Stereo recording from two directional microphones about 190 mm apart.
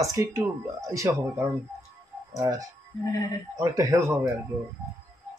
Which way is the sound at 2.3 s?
20° right (ahead or behind).